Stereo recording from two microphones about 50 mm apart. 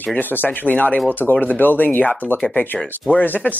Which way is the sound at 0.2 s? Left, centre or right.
Left.